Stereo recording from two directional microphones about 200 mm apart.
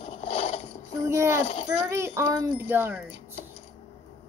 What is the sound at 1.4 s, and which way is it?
Speech, 30° left (ahead or behind).